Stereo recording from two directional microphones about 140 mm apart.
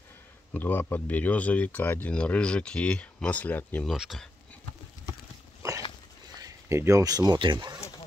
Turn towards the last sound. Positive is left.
turn(degrees=-35)  # may be behind; listen again after turning